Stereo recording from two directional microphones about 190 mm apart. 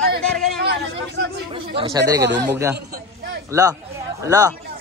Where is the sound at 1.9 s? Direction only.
20° right (ahead or behind).